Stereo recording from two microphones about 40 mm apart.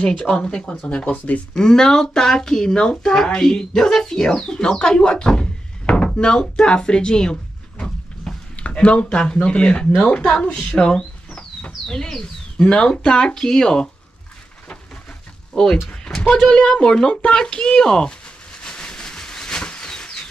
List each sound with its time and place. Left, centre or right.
0.0 s speech: left
1.1 s speech: left
1.6 s speech: centre
8.5 s speech: left
13.3 s speech: centre
15.5 s speech: centre
18.6 s a sound: left